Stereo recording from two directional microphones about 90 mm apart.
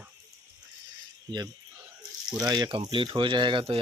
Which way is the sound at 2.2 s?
45° right (ahead or behind).